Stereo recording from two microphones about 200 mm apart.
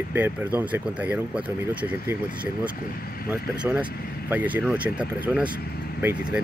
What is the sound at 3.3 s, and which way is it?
Speech, 5° right (ahead or behind).